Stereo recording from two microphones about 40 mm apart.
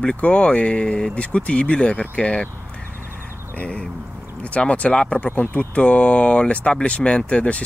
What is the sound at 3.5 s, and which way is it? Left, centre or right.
Speech, left.